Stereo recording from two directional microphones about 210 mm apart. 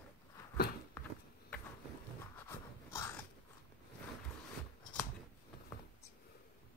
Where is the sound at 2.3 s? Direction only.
10° left (ahead or behind).